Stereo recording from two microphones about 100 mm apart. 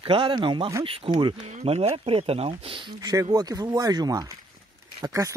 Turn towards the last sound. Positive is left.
turn(degrees=-35)  # may be behind; listen again after turning